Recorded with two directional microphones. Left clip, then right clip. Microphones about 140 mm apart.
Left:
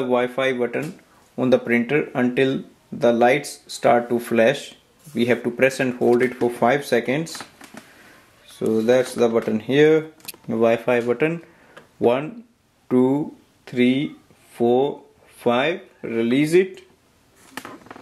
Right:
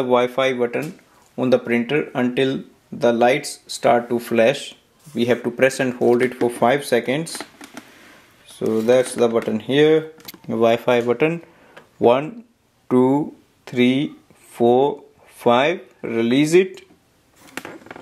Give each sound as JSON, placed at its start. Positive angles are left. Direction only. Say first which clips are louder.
{"t": 0.0, "sound": "speech", "louder": "right 3 dB", "side_deg": -20}
{"t": 8.5, "sound": "speech", "louder": "right 1 dB", "side_deg": -10}